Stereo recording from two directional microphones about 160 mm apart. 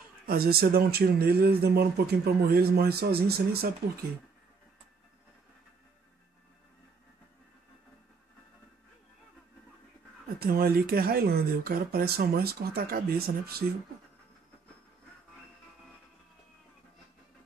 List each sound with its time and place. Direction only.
0.3 s speech: 70° right (ahead or behind)
10.4 s speech: 70° right (ahead or behind)